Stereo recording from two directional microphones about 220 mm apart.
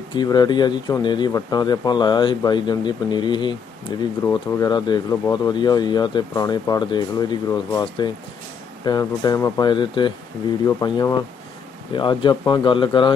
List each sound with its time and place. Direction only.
0.1 s speech: 20° left (ahead or behind)